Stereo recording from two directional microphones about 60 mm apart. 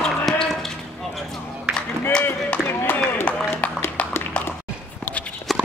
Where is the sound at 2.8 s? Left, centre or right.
Left.